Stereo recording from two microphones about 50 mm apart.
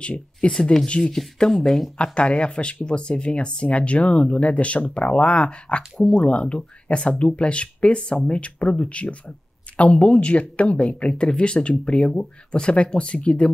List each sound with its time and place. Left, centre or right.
0.0 s speech: left; by 1.9 s centre
2.0 s speech: left